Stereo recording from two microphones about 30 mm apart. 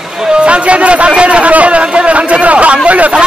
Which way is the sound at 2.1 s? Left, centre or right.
Right.